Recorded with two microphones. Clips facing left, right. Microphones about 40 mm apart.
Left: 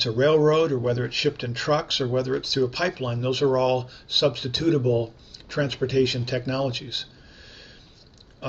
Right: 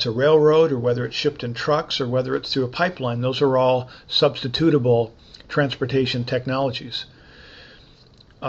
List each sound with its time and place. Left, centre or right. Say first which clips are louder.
0.0 s speech: right 3 dB; centre; by 7.7 s right